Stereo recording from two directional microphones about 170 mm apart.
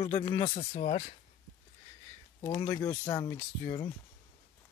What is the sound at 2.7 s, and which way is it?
Speech, 15° left (ahead or behind).